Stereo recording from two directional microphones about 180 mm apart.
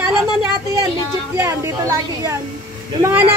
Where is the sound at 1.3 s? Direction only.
15° right (ahead or behind).